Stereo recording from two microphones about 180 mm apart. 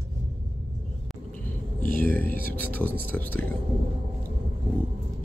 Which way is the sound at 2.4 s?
10° left (ahead or behind).